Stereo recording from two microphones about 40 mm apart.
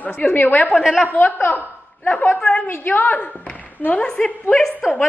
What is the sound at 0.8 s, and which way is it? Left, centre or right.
Speech, centre.